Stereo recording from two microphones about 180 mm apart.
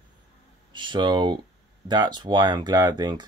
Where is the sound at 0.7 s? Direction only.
25° right (ahead or behind).